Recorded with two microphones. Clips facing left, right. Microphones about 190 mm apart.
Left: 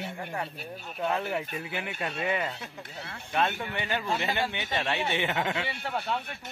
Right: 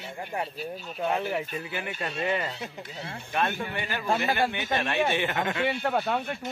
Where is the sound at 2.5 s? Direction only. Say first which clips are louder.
Right 4 dB; 20° right (ahead or behind).